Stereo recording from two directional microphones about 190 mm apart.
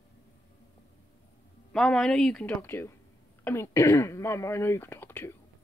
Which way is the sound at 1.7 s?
5° left (ahead or behind).